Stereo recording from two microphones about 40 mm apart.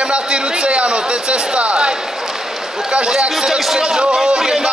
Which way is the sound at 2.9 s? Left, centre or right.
Right.